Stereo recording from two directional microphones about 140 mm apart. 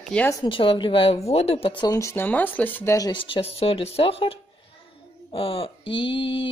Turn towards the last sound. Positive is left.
turn(degrees=40)  # may be behind; listen again after turning